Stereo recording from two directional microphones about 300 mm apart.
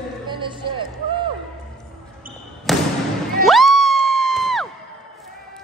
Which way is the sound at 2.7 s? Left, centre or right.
Centre.